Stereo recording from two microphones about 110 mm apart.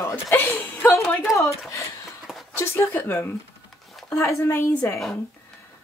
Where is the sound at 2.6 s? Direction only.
25° left (ahead or behind).